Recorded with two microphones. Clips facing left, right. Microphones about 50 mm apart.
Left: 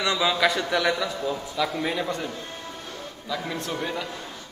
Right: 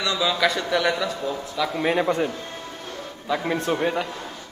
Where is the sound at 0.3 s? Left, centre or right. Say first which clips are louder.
Right 1 dB; centre.